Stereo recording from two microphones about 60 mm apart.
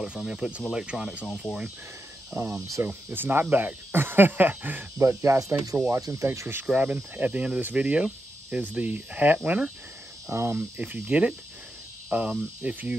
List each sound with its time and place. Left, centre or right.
0.0 s speech: centre
2.3 s speech: right
3.1 s speech: right
3.9 s a sound: right
4.9 s speech: right
5.9 s speech: right
6.6 s speech: right
10.2 s speech: right
10.8 s speech: right